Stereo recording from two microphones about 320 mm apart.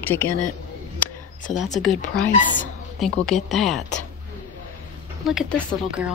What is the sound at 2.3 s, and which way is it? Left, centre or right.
Speech, left.